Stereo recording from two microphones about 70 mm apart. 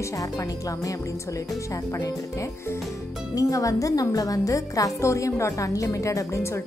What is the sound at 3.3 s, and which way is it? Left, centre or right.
Speech, left.